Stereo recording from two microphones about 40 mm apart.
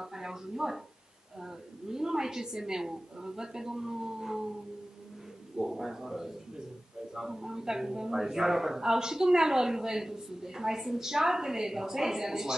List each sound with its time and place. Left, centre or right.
0.0 s speech: centre
5.6 s speech: centre